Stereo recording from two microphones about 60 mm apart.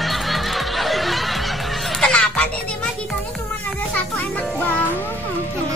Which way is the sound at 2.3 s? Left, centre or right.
Centre.